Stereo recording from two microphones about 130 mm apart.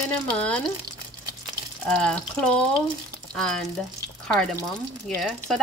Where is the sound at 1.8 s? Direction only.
10° left (ahead or behind).